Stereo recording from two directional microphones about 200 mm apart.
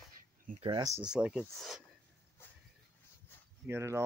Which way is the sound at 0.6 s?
20° right (ahead or behind).